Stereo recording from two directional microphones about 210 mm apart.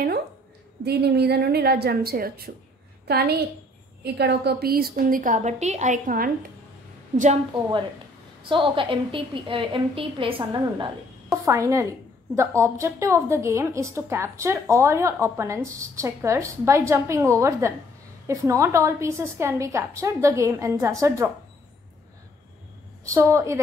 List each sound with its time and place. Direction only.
0.8 s a woman's voice: 50° right (ahead or behind)
8.4 s a woman's voice: 25° right (ahead or behind)
23.0 s a woman's voice: 15° right (ahead or behind)